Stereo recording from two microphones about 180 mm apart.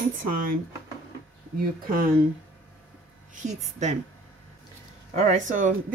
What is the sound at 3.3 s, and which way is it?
Speech, 40° right (ahead or behind).